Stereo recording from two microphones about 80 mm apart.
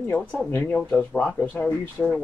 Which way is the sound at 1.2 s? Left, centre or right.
Centre.